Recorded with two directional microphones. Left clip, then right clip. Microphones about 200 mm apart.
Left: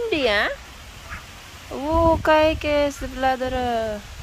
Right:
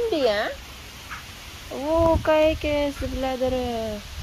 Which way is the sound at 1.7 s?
30° left (ahead or behind).